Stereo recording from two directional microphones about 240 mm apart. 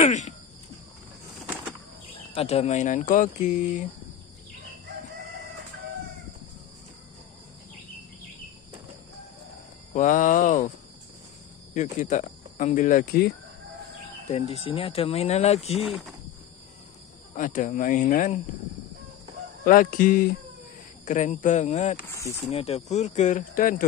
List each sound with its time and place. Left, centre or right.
0.0 s speech: left
2.3 s speech: left
9.9 s speech: left
11.7 s speech: left
14.3 s speech: left
15.8 s speech: centre
17.4 s speech: left
19.6 s speech: left